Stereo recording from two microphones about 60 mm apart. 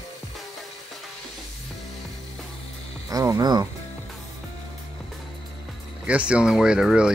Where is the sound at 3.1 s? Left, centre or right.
Right.